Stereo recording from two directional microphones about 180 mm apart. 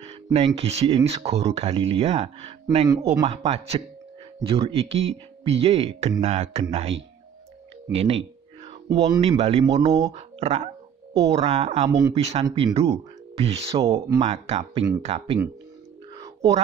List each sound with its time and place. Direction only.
0.0 s a sound: 35° right (ahead or behind)
0.6 s speech: 35° right (ahead or behind)
8.8 s speech: 20° right (ahead or behind)
9.2 s speech: 35° right (ahead or behind)
13.9 s speech: 15° right (ahead or behind)
14.2 s speech: 35° right (ahead or behind)
16.3 s whispering: 35° right (ahead or behind)